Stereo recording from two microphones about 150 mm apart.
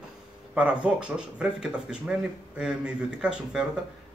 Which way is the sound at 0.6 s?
10° right (ahead or behind).